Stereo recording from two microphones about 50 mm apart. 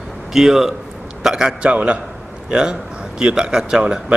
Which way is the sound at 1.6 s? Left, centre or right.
Right.